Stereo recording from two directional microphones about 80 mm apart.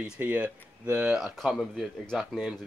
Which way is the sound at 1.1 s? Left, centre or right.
Centre.